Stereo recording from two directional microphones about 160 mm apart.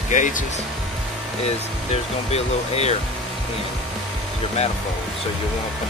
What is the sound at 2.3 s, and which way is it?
Speech, 40° left (ahead or behind).